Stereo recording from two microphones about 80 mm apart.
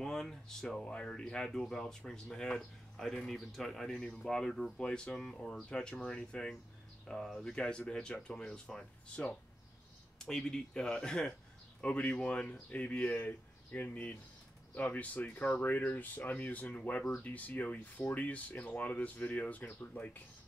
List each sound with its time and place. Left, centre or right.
0.0 s speech: centre